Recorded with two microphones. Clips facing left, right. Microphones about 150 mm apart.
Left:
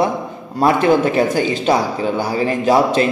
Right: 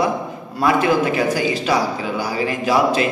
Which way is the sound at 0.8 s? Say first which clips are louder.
Left 4 dB; 25° left (ahead or behind).